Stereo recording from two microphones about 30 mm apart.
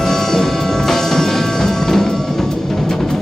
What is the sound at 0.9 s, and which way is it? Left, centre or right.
Music, centre.